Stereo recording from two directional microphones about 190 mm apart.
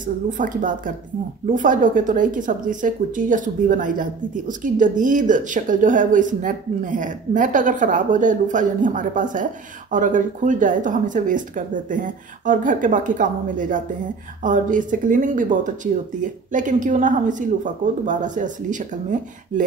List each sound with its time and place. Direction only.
0.0 s a woman's voice: 45° right (ahead or behind)